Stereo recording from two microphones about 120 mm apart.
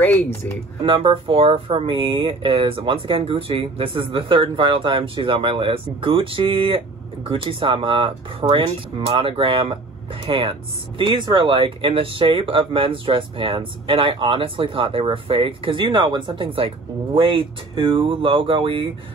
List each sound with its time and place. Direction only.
0.0 s speech: 15° left (ahead or behind)
0.8 s speech: 45° right (ahead or behind)